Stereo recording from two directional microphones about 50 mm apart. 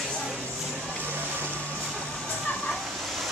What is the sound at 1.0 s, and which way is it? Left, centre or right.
Vehicle, right.